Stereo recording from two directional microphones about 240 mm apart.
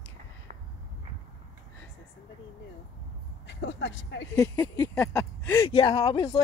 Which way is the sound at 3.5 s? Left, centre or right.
Left.